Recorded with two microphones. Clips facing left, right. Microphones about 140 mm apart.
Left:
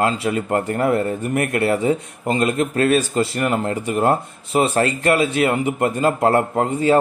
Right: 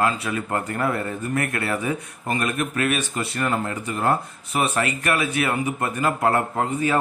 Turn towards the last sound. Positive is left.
turn(degrees=25)  # may be behind; listen again after turning